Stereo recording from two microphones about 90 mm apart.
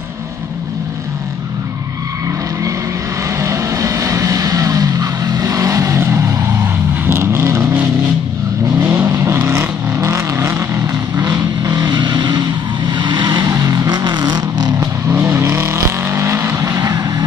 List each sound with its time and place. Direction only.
3.3 s vehicle: 35° right (ahead or behind)
8.8 s vehicle: 30° right (ahead or behind)
11.1 s vehicle: 40° right (ahead or behind)
13.5 s vehicle: 40° right (ahead or behind)
14.8 s vehicle: 25° right (ahead or behind); by 17.0 s 45° right (ahead or behind)